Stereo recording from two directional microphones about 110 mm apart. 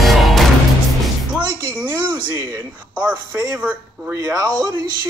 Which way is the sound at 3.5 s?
15° right (ahead or behind).